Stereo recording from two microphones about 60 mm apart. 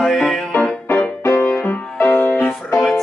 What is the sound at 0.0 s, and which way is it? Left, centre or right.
Music, centre.